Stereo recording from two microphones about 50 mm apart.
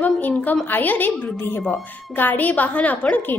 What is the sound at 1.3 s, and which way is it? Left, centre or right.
Speech, left.